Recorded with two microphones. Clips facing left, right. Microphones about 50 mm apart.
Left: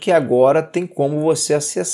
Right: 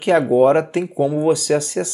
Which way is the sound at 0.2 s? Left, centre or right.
Centre.